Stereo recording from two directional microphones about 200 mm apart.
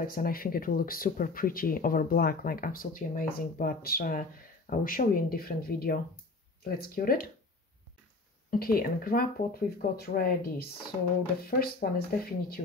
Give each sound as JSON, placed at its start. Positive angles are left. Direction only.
{"t": 0.0, "sound": "speech", "side_deg": 45}
{"t": 8.5, "sound": "speech", "side_deg": 45}